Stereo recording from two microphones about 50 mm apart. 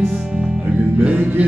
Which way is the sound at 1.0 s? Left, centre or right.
Right.